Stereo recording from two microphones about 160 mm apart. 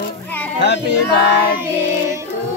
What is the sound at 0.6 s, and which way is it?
Female singing, 90° left.